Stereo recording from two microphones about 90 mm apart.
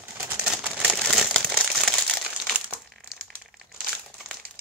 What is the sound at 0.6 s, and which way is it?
Crumpling, 15° right (ahead or behind).